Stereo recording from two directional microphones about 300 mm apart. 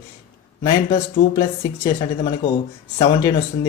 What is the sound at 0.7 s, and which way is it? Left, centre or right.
Speech, centre.